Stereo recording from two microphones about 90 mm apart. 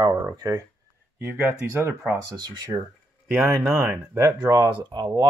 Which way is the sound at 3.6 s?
10° right (ahead or behind).